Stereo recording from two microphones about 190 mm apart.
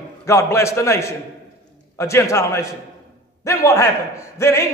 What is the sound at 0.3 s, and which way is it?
A man's voice, 15° left (ahead or behind).